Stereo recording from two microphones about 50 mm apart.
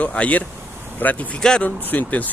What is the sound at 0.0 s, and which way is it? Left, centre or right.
Speech, left.